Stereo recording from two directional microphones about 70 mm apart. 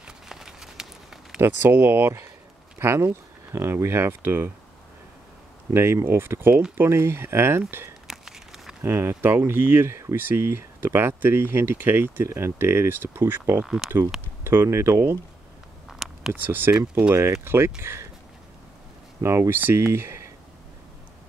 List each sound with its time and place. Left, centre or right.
0.0 s a sound: centre
1.4 s speech: right
5.7 s speech: right
8.1 s a sound: centre
8.8 s speech: right
10.1 s speech: right
15.9 s a sound: centre
16.4 s speech: right
17.1 s speech: right
19.2 s speech: right